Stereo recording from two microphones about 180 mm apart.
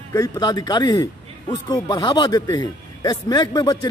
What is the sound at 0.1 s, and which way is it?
A man's voice, 20° left (ahead or behind).